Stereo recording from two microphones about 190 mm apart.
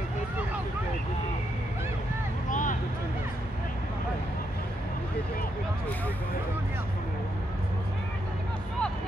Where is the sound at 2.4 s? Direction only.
45° left (ahead or behind).